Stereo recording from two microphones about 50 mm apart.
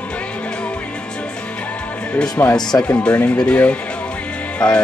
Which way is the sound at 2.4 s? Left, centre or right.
Left.